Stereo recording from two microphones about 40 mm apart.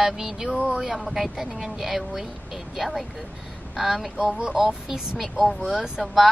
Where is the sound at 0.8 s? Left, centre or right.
Centre.